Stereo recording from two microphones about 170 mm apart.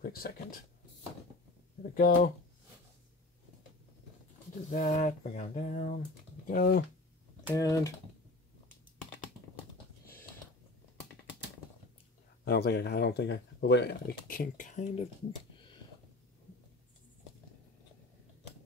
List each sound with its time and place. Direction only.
0.0 s speech: 60° left (ahead or behind)
2.0 s speech: 60° left (ahead or behind)
4.6 s a sound: 40° left (ahead or behind)
6.4 s speech: 55° left (ahead or behind)
7.5 s speech: 20° left (ahead or behind)
12.4 s speech: 70° left (ahead or behind); by 15.0 s 45° left (ahead or behind)